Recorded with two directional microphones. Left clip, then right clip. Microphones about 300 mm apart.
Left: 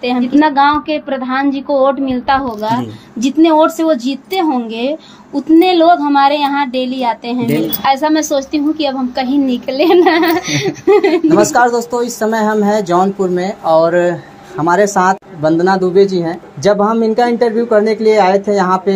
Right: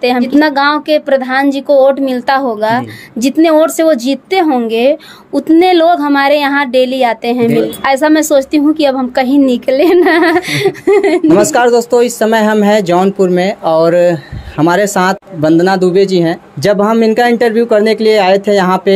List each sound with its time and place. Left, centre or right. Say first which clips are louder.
0.0 s a woman's voice: right 2 dB; right